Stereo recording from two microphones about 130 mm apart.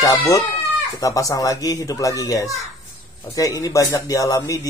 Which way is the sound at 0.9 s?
25° left (ahead or behind).